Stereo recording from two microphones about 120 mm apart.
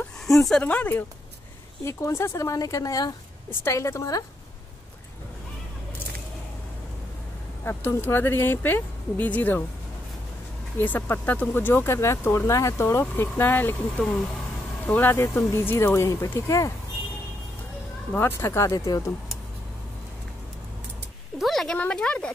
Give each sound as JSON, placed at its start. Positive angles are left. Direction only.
{"t": 0.3, "sound": "speech", "side_deg": 0}
{"t": 1.9, "sound": "speech", "side_deg": 25}
{"t": 7.6, "sound": "speech", "side_deg": 20}
{"t": 10.8, "sound": "speech", "side_deg": 15}
{"t": 18.1, "sound": "speech", "side_deg": 20}
{"t": 21.4, "sound": "speech", "side_deg": 0}